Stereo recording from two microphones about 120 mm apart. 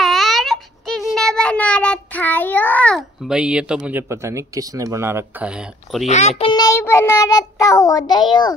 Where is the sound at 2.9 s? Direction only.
5° right (ahead or behind).